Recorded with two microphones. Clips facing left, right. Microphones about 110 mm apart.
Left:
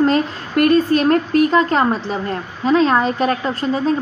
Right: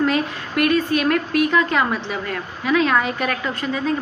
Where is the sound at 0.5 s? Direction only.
45° left (ahead or behind).